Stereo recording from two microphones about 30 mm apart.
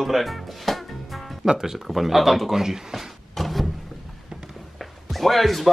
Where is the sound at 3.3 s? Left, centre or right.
Centre.